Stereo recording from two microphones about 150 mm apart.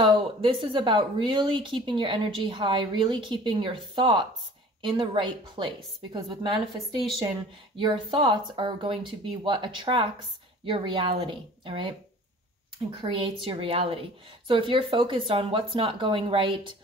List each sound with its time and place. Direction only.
0.0 s a woman's voice: 35° right (ahead or behind)
13.0 s a woman's voice: 35° right (ahead or behind)